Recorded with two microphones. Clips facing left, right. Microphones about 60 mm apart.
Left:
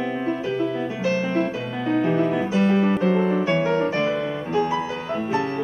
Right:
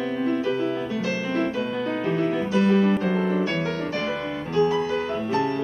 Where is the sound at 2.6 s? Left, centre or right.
Left.